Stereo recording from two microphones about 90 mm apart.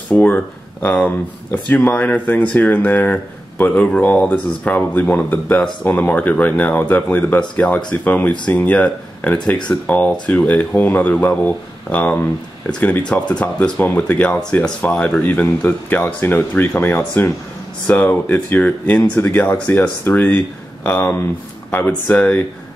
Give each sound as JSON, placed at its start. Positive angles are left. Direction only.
{"t": 0.1, "sound": "speech", "side_deg": 15}